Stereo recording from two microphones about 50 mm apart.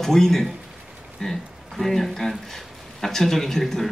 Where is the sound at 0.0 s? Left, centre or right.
Centre.